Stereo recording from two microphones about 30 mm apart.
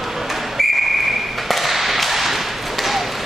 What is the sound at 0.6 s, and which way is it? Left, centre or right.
Whistle, centre.